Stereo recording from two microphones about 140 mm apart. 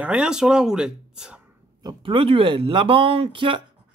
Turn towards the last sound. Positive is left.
turn(degrees=-35)  # may be behind; listen again after turning